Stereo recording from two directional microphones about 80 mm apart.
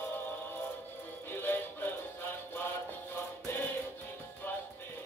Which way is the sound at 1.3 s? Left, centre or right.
Left.